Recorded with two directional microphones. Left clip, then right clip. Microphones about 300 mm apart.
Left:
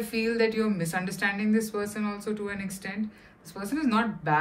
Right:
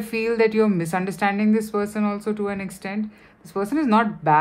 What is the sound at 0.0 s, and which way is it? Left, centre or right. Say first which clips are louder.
A woman's voice: right 6 dB; centre.